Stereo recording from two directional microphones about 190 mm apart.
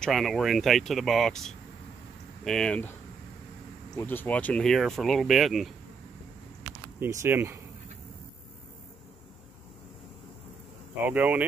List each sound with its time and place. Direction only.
0.0 s speech: centre (ahead or behind)
4.0 s speech: 10° left (ahead or behind)
7.0 s speech: 15° right (ahead or behind)
11.1 s speech: 10° right (ahead or behind)